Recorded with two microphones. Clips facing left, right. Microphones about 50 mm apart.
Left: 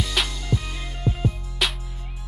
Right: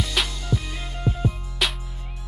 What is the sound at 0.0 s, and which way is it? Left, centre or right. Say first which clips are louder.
Music: even; centre.